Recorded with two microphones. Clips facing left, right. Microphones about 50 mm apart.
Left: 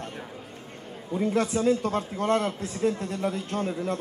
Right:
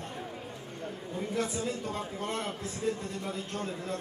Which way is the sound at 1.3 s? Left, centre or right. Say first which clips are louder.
Left 9 dB; left.